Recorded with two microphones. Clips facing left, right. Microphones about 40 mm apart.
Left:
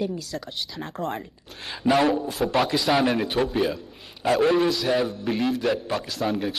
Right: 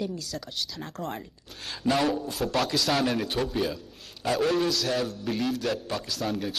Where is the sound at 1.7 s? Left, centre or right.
Centre.